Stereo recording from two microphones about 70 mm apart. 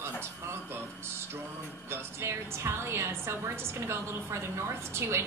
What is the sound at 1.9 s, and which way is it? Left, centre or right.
A woman's voice, right.